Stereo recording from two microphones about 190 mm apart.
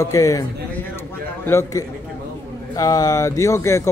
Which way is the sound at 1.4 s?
15° left (ahead or behind).